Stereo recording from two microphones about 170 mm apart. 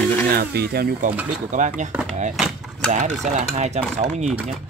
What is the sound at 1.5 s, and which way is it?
Stir, 45° right (ahead or behind).